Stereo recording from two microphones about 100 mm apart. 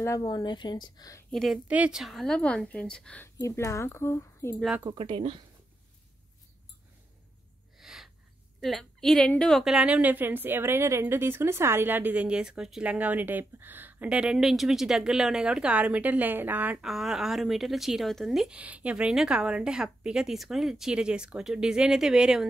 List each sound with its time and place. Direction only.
0.2 s a woman's voice: 45° left (ahead or behind)
1.3 s speech: centre (ahead or behind)
1.7 s a woman's voice: 10° right (ahead or behind); by 3.3 s 10° left (ahead or behind)
3.3 s speech: 30° left (ahead or behind)
4.9 s speech: 65° right (ahead or behind)
7.8 s a sound: 5° right (ahead or behind)
8.5 s a woman's voice: centre (ahead or behind)
9.8 s speech: 10° right (ahead or behind)
16.8 s speech: 5° right (ahead or behind)
18.6 s speech: 15° right (ahead or behind)